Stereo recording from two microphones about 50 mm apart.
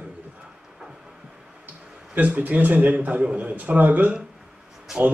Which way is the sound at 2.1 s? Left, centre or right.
Right.